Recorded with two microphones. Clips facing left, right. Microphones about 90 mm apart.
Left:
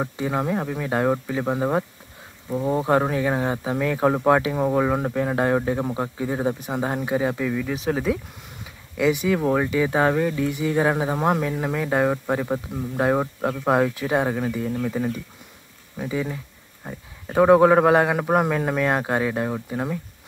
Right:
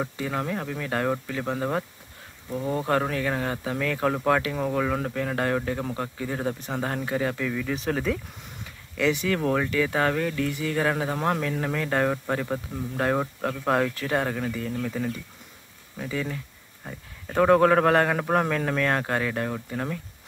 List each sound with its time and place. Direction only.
0.0 s speech: 20° left (ahead or behind)